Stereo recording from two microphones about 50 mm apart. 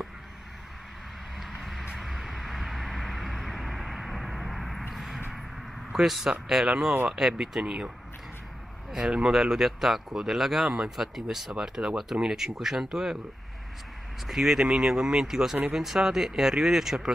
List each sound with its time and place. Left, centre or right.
1.4 s vehicle: centre
5.9 s a man's voice: centre
8.9 s speech: centre
14.2 s speech: centre